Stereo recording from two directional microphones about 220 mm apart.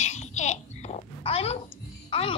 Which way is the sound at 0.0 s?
30° left (ahead or behind).